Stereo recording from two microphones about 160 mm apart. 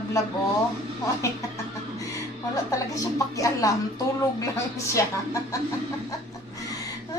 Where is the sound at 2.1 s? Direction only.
20° left (ahead or behind).